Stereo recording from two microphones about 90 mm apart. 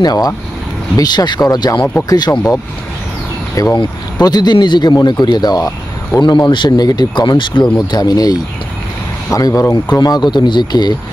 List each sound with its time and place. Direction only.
0.0 s speech: 45° left (ahead or behind)
3.5 s speech: 40° left (ahead or behind); by 7.6 s 60° left (ahead or behind)
7.7 s speech: 50° left (ahead or behind)